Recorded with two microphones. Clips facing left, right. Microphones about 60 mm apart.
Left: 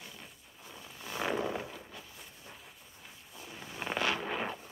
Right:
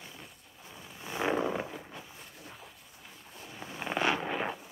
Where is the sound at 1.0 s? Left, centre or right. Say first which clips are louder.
Right 3 dB; right.